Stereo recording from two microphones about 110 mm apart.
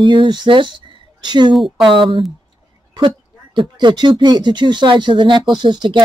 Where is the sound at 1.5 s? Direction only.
Centre (ahead or behind).